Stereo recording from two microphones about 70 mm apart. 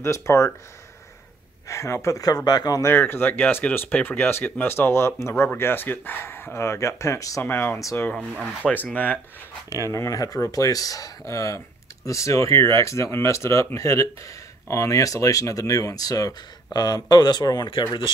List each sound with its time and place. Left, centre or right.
0.0 s speech: left
1.7 s speech: left
2.8 s speech: left
7.4 s speech: left
8.2 s speech: centre
8.9 s speech: left
9.7 s speech: left
16.7 s speech: left